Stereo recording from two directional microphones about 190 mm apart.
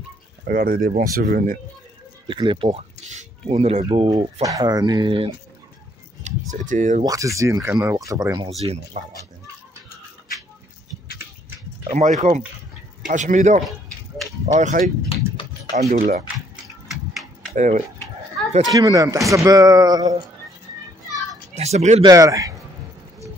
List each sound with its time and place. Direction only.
0.5 s speech: 50° right (ahead or behind)
2.2 s speech: 25° right (ahead or behind)
6.2 s speech: 40° right (ahead or behind)
7.0 s speech: 20° right (ahead or behind)
8.5 s speech: 35° right (ahead or behind)
11.9 s speech: 40° right (ahead or behind)
15.0 s a sound: 30° left (ahead or behind)
15.7 s speech: 35° right (ahead or behind)
16.8 s a sound: centre (ahead or behind)
17.6 s speech: 40° right (ahead or behind)
18.7 s speech: 20° right (ahead or behind)
21.5 s speech: 35° right (ahead or behind)
22.0 s speech: 20° right (ahead or behind)